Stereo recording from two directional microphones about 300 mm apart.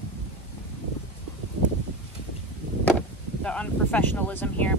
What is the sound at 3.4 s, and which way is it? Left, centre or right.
Speech, centre.